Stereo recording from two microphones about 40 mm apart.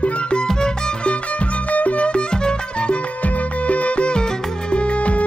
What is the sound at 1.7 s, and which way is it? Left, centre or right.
Music, left.